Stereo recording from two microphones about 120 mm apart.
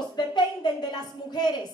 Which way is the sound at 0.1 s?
40° left (ahead or behind).